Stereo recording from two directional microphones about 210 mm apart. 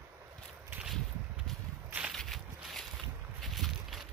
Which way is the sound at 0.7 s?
5° right (ahead or behind).